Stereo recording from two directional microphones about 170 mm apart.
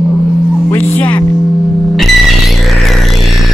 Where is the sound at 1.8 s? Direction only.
Centre (ahead or behind).